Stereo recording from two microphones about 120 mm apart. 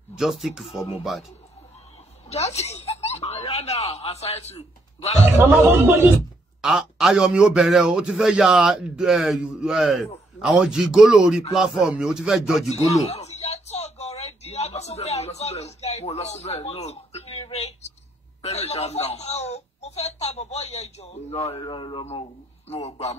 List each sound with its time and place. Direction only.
0.1 s a man's voice: centre (ahead or behind)
2.2 s speech: 65° left (ahead or behind)
5.7 s a man's voice: 20° right (ahead or behind)
6.6 s a man's voice: centre (ahead or behind)
12.8 s a sound: 65° left (ahead or behind)
18.4 s speech: 65° left (ahead or behind)
21.6 s a man's voice: 45° left (ahead or behind)
22.7 s speech: 60° left (ahead or behind)